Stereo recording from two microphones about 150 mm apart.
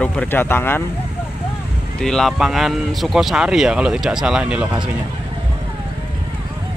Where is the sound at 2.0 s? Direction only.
5° left (ahead or behind).